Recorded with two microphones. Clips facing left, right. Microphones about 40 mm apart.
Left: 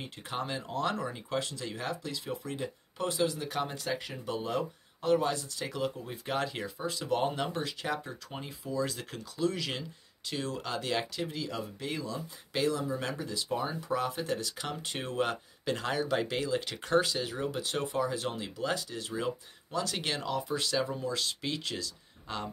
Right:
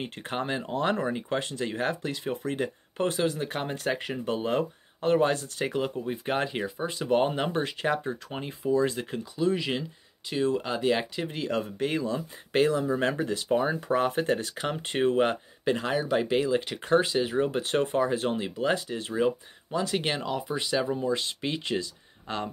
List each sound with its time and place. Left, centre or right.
0.0 s speech: right
9.1 s speech: centre
11.2 s speech: right